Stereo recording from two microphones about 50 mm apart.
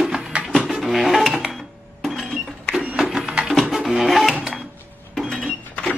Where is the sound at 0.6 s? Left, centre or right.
Centre.